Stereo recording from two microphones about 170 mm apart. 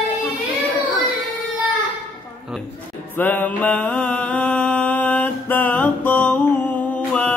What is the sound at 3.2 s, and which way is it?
Mantra, 10° left (ahead or behind).